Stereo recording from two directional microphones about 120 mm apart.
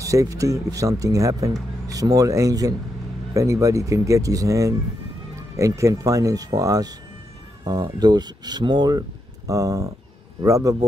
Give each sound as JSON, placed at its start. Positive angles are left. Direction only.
{"t": 0.0, "sound": "speech", "side_deg": -25}